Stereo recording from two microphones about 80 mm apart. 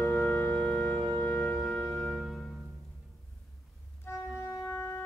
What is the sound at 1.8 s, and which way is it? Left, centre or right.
Music, centre.